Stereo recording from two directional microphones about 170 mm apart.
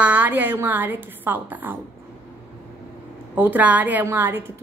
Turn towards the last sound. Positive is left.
turn(degrees=-15)  # may be behind; listen again after turning